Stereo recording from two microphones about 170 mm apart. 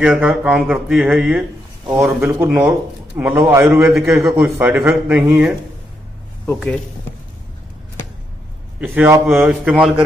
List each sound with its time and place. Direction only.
0.0 s speech: 5° right (ahead or behind)
8.8 s speech: 15° right (ahead or behind)